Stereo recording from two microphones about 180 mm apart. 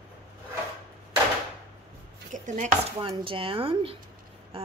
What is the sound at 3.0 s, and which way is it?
Speech, 30° right (ahead or behind).